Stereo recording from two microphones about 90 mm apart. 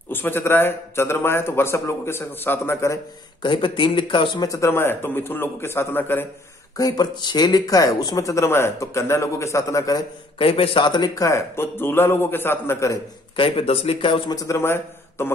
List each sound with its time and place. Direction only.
0.1 s a man's voice: 25° left (ahead or behind)
3.4 s speech: 65° left (ahead or behind)
4.5 s a man's voice: 35° left (ahead or behind)
6.8 s speech: 50° left (ahead or behind)
10.4 s a man's voice: 90° left; by 11.1 s 60° left (ahead or behind)
11.1 s a man's voice: 35° left (ahead or behind)
13.4 s speech: 90° left; by 14.3 s 75° left (ahead or behind)
14.3 s speech: 40° left (ahead or behind)
14.6 s a man's voice: 25° left (ahead or behind)